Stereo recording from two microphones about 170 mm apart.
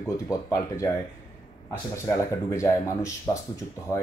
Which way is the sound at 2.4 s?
20° left (ahead or behind).